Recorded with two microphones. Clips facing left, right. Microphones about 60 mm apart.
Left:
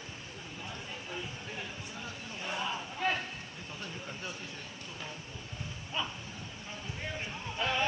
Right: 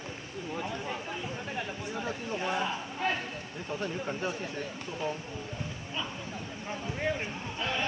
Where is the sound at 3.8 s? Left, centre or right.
Right.